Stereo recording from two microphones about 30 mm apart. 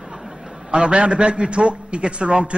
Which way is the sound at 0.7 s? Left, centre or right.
Right.